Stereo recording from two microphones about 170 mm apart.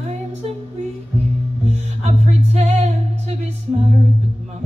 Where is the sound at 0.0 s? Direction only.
40° right (ahead or behind).